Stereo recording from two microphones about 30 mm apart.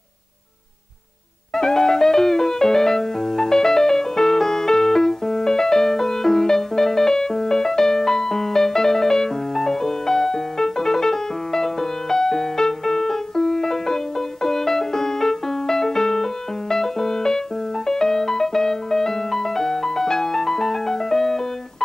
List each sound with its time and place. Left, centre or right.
1.5 s music: centre